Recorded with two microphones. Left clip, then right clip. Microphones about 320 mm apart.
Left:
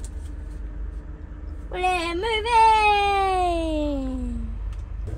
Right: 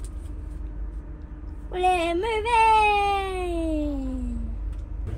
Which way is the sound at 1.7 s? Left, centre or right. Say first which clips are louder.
Right 1 dB; left.